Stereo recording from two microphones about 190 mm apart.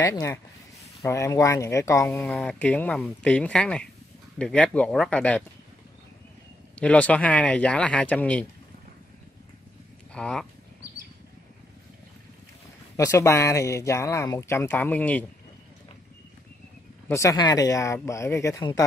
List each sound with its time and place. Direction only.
0.0 s speech: 15° left (ahead or behind)
6.7 s speech: 5° left (ahead or behind)
10.1 s speech: 5° left (ahead or behind)
12.9 s speech: 15° left (ahead or behind)
17.1 s speech: 15° left (ahead or behind)